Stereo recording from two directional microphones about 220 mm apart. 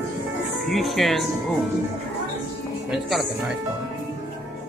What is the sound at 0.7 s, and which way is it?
Speech, centre (ahead or behind).